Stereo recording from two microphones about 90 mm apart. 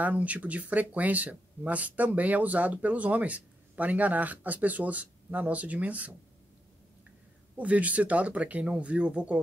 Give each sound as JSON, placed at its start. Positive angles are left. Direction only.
{"t": 0.0, "sound": "speech", "side_deg": -15}
{"t": 7.5, "sound": "speech", "side_deg": -15}